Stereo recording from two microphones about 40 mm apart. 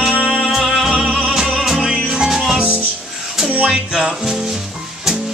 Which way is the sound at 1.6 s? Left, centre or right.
Centre.